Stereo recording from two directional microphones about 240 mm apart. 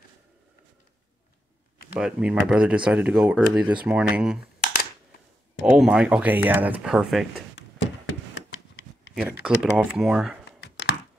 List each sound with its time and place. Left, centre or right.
2.0 s speech: centre
5.7 s speech: centre
7.5 s a sound: left
9.4 s speech: centre